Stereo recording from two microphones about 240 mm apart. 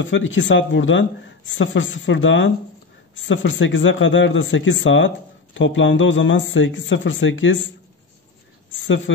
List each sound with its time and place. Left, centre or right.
0.0 s speech: left
8.7 s speech: left